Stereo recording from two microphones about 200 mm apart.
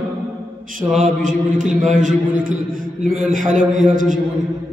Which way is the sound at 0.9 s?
40° right (ahead or behind).